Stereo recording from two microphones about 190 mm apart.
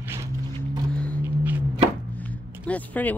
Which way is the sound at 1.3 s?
10° right (ahead or behind).